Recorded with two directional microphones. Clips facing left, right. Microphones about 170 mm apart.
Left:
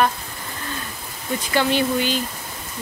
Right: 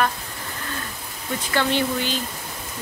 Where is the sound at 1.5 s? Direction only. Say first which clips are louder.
Left 2 dB; 15° left (ahead or behind).